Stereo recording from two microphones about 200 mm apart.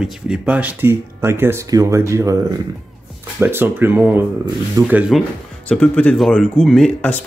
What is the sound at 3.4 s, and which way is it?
Speech, 10° right (ahead or behind).